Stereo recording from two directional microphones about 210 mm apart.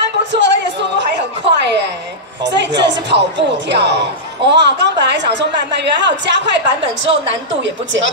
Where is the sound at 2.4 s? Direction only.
55° right (ahead or behind).